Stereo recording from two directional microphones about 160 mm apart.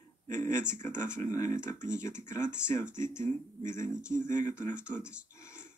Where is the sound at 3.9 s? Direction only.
5° right (ahead or behind).